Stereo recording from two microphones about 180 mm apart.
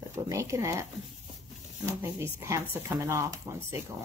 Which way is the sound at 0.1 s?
15° right (ahead or behind).